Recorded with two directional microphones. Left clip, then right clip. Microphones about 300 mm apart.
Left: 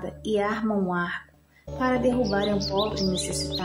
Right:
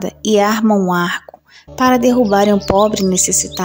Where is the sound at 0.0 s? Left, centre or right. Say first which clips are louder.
Right 12 dB; right.